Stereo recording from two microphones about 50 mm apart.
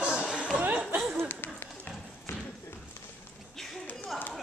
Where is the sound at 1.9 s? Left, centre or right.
Left.